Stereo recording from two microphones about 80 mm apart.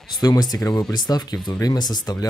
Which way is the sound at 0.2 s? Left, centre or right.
Left.